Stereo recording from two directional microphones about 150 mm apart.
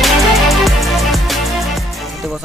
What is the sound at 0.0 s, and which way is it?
Music, centre (ahead or behind).